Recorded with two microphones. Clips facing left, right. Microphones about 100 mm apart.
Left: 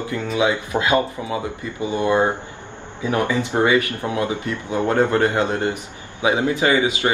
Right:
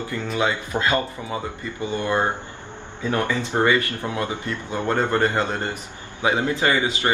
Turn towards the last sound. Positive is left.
turn(degrees=15)  # may be behind; listen again after turning